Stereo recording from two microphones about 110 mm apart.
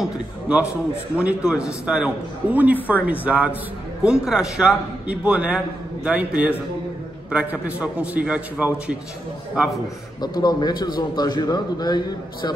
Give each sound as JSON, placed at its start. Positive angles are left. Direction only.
{"t": 0.0, "sound": "a man's voice", "side_deg": -10}
{"t": 10.2, "sound": "a man's voice", "side_deg": 40}